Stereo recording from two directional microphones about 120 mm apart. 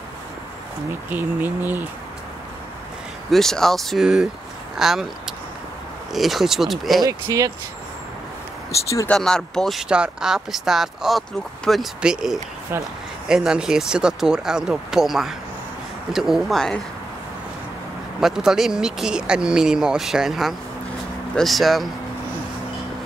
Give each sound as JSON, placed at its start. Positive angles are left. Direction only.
{"t": 1.1, "sound": "speech", "side_deg": -15}
{"t": 3.3, "sound": "speech", "side_deg": 5}
{"t": 7.0, "sound": "speech", "side_deg": -30}
{"t": 9.0, "sound": "speech", "side_deg": 10}
{"t": 18.2, "sound": "speech", "side_deg": -5}